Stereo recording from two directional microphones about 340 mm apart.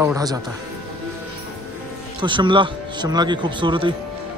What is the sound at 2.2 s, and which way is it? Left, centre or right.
Speech, centre.